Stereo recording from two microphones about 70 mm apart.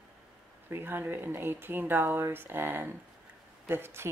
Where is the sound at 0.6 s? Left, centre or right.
Right.